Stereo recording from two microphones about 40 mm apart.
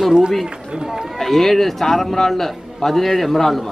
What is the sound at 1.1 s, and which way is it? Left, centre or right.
Speech, centre.